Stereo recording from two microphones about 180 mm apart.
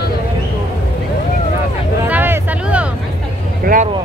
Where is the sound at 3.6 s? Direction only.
50° right (ahead or behind).